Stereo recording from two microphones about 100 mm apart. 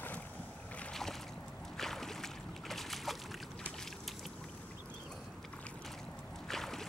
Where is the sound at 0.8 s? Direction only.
5° left (ahead or behind).